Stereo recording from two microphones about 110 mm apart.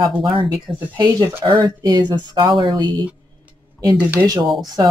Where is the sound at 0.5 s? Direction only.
35° right (ahead or behind).